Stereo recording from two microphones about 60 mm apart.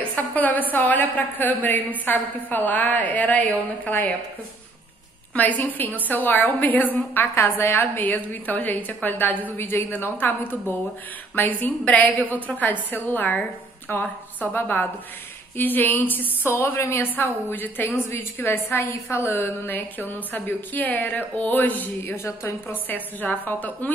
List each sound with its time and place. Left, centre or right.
0.1 s a woman's voice: left
5.6 s a woman's voice: left
7.3 s a woman's voice: left
16.4 s a woman's voice: left
22.7 s a woman's voice: left